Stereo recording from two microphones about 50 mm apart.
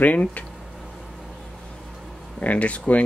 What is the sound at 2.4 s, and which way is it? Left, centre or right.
Speech, left.